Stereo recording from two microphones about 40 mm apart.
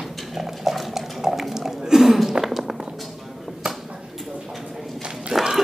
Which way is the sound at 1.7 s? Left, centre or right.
Centre.